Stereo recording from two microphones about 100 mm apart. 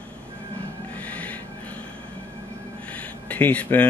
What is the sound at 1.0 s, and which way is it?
Snort, 15° left (ahead or behind).